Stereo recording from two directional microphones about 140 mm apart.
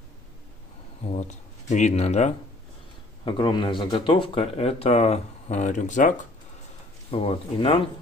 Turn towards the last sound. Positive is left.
turn(degrees=40)  # may be behind; listen again after turning